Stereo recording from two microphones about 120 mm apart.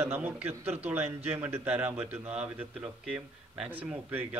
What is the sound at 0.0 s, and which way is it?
A man's voice, 20° right (ahead or behind).